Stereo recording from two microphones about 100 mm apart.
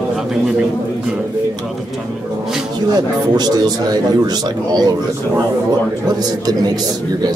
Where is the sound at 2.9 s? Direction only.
45° right (ahead or behind).